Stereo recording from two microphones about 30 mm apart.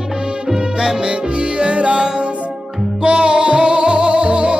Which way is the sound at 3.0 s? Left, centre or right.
Right.